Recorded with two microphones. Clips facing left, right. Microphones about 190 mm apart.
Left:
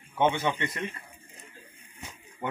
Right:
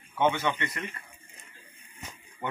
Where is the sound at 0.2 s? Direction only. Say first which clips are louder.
Left 1 dB; 15° left (ahead or behind).